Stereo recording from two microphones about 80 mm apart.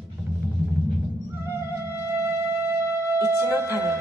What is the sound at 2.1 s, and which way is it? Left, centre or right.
Music, right.